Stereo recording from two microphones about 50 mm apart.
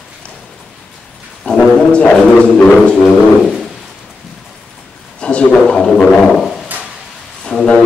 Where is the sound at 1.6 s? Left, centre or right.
Left.